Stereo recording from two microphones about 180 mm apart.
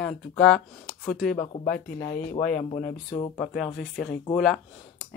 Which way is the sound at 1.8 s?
45° left (ahead or behind).